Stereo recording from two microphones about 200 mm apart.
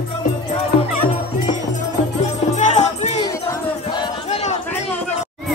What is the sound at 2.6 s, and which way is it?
Music, 35° left (ahead or behind).